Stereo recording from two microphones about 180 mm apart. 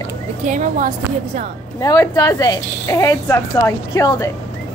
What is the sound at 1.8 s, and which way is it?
Speech, 20° left (ahead or behind).